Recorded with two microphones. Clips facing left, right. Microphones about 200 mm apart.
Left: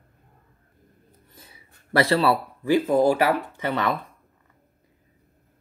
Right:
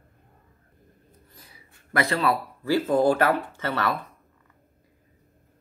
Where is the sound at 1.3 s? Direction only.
25° left (ahead or behind).